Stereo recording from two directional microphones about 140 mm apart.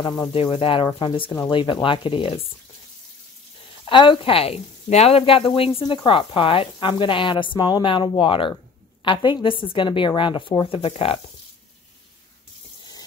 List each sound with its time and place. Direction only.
0.0 s speech: 25° left (ahead or behind)
0.3 s speech: 40° left (ahead or behind)
3.8 s speech: 35° left (ahead or behind)